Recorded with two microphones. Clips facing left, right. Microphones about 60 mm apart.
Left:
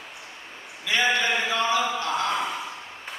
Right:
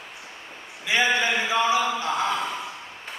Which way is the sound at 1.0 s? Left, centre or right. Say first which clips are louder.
Left 1 dB; centre.